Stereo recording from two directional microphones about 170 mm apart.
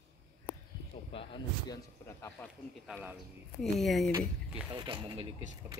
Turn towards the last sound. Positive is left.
turn(degrees=-30)  # may be behind; listen again after turning